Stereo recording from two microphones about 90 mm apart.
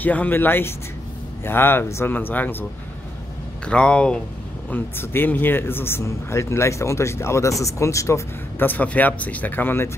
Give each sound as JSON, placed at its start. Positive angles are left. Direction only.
{"t": 0.0, "sound": "speech", "side_deg": 20}
{"t": 3.6, "sound": "speech", "side_deg": 10}
{"t": 4.6, "sound": "speech", "side_deg": 20}
{"t": 8.5, "sound": "speech", "side_deg": 20}